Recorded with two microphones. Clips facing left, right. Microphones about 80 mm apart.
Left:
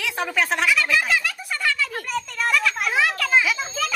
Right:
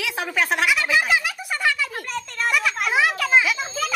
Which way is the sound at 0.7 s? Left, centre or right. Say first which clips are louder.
Right 1 dB; centre.